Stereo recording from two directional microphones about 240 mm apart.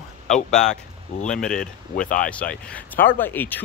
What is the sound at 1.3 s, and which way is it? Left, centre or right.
Speech, centre.